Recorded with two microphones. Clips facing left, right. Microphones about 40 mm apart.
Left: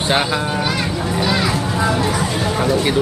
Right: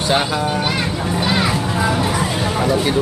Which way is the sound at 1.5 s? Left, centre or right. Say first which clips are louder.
Even; centre.